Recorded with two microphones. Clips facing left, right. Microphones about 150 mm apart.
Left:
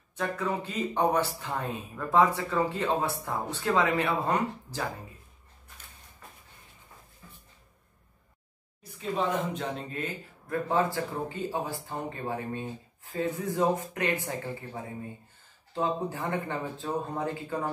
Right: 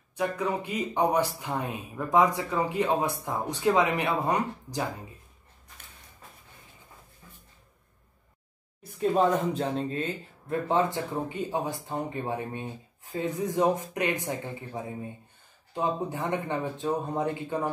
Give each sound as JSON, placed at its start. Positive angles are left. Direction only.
{"t": 0.1, "sound": "speech", "side_deg": -15}
{"t": 9.5, "sound": "speech", "side_deg": -35}